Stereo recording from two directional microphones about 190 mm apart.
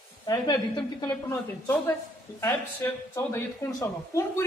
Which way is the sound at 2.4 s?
10° left (ahead or behind).